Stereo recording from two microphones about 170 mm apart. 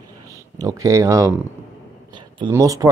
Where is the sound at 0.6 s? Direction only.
20° right (ahead or behind).